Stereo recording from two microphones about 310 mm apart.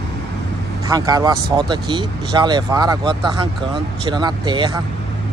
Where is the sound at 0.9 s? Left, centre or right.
Centre.